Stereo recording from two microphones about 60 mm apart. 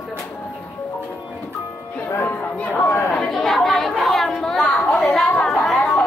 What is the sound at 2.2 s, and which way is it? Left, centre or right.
Chatter, left.